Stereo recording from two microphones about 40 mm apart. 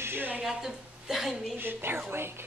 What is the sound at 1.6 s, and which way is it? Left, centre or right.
Speech, right.